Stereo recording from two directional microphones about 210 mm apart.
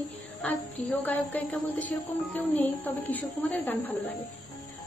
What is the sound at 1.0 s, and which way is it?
A woman's voice, 10° left (ahead or behind).